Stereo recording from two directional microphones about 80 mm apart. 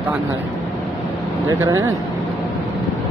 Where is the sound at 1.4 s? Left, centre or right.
Right.